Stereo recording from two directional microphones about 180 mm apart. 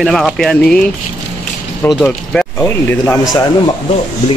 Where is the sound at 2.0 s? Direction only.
5° left (ahead or behind).